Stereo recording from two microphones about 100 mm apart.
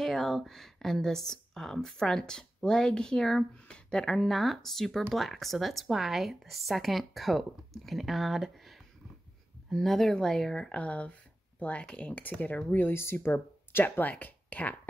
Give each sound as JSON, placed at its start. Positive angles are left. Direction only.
{"t": 0.0, "sound": "speech", "side_deg": 0}